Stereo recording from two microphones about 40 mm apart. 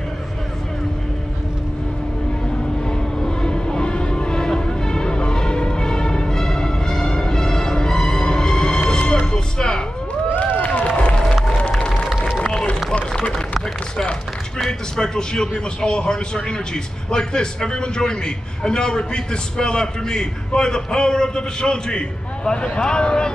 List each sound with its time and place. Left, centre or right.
2.9 s vehicle: centre
9.2 s music: centre
10.6 s run: left
13.1 s run: left
14.7 s a man's voice: centre